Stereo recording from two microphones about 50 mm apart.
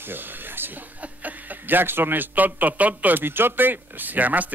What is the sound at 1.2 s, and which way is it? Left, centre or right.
A man's voice, right.